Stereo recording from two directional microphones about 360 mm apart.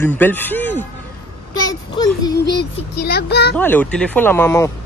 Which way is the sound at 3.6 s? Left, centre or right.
Centre.